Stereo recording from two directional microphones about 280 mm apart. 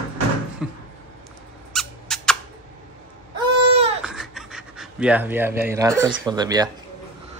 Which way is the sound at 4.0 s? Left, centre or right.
Centre.